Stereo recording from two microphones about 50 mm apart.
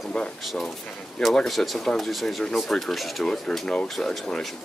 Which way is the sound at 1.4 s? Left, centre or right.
Centre.